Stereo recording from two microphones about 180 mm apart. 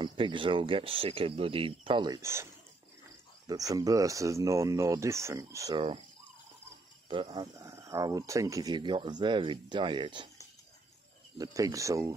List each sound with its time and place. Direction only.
0.0 s speech: 25° right (ahead or behind)
7.1 s speech: 30° right (ahead or behind)
7.5 s speech: 15° right (ahead or behind)
11.3 s speech: 20° right (ahead or behind)